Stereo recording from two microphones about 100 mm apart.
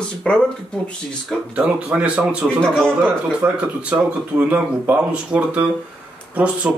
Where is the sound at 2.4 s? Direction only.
5° left (ahead or behind).